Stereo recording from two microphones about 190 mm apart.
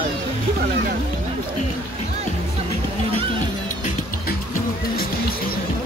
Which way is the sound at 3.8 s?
50° left (ahead or behind).